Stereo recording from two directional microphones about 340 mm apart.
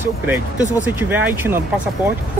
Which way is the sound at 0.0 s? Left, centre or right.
Centre.